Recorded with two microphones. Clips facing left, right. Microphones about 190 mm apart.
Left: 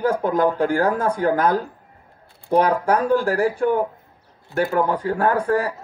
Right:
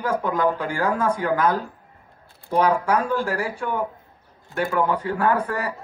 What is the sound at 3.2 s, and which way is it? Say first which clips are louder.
Speech: left 6 dB; 40° left (ahead or behind).